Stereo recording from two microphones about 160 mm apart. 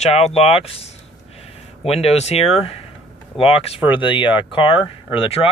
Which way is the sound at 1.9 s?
40° left (ahead or behind).